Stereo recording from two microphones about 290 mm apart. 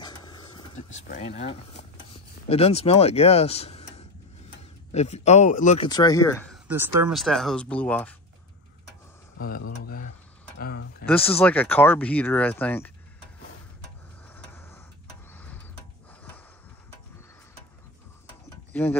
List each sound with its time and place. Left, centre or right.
0.0 s dog: centre
0.9 s speech: left; by 6.6 s centre
6.7 s speech: centre
9.8 s a sound: left
10.6 s speech: left
11.1 s speech: centre
14.3 s tick-tock: centre
15.3 s a sound: centre
18.7 s a sound: centre